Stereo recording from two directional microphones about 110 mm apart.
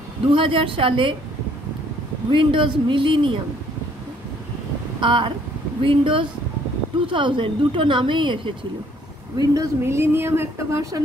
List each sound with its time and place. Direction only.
0.3 s a woman's voice: 50° right (ahead or behind)
2.3 s a woman's voice: 50° right (ahead or behind)
5.0 s a woman's voice: 50° right (ahead or behind)
9.4 s speech: 30° right (ahead or behind)